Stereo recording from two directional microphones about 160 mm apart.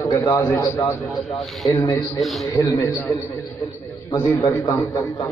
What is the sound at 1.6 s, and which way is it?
A man's voice, 20° left (ahead or behind).